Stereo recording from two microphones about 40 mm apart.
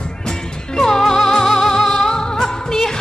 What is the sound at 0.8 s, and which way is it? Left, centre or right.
Music, centre.